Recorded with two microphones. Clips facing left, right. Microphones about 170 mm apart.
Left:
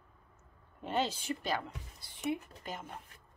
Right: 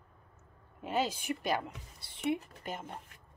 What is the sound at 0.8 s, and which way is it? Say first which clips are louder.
A woman's voice: right 1 dB; 5° right (ahead or behind).